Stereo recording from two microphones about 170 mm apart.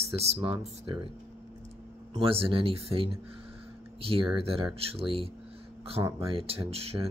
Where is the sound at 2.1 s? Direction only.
35° right (ahead or behind).